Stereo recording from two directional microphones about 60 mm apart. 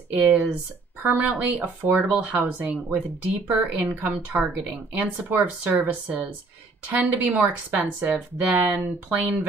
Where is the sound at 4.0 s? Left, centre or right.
Right.